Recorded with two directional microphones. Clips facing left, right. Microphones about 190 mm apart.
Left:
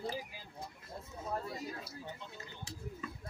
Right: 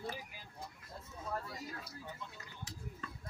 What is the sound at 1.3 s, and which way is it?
Speech, 20° left (ahead or behind).